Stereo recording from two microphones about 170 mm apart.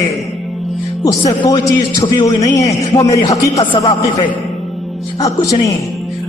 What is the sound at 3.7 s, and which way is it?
Speech, 30° left (ahead or behind).